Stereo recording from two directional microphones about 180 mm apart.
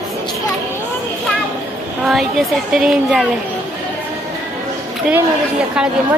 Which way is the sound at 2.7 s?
Centre (ahead or behind).